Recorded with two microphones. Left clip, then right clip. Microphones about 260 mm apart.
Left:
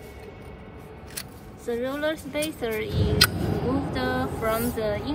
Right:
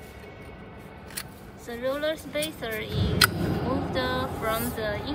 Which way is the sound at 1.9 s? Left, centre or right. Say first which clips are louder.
Even; centre.